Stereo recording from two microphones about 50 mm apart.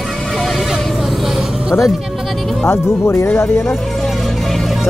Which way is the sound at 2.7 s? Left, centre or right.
Left.